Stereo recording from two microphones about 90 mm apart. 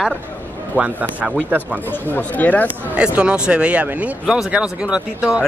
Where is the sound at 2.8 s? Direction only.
15° right (ahead or behind).